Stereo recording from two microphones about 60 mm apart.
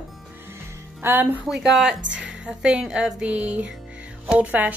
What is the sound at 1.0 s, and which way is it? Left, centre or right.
Speech, right.